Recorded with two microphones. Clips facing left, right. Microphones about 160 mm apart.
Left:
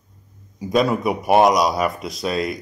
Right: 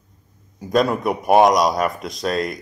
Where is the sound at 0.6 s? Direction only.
Centre (ahead or behind).